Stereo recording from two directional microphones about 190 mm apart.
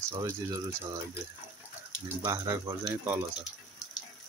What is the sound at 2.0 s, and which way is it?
Speech, 15° right (ahead or behind).